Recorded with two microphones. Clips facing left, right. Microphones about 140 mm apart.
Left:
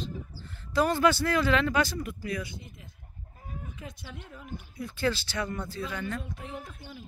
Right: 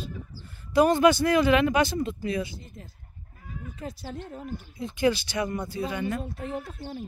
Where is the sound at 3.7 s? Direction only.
40° right (ahead or behind).